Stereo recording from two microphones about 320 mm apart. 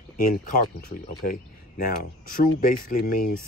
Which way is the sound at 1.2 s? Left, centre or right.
Left.